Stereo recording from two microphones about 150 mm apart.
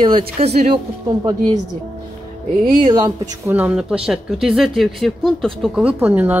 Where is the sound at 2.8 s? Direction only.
25° right (ahead or behind).